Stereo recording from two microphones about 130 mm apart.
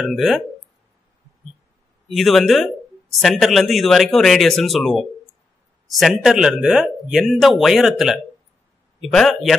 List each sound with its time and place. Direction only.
0.0 s speech: centre (ahead or behind)
2.0 s speech: centre (ahead or behind)